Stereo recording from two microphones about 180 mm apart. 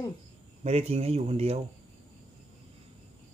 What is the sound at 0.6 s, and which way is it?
Speech, 35° right (ahead or behind).